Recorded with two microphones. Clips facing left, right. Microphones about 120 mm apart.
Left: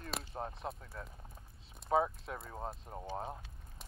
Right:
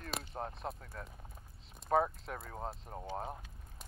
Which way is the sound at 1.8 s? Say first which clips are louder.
Right 1 dB; centre (ahead or behind).